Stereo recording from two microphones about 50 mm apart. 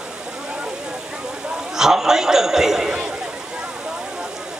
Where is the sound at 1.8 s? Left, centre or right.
Centre.